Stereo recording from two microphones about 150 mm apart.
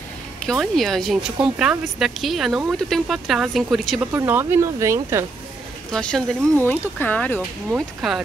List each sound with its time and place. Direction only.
0.5 s speech: centre (ahead or behind)
4.1 s speech: 15° right (ahead or behind)
5.9 s speech: 5° left (ahead or behind)
7.7 s speech: 5° right (ahead or behind)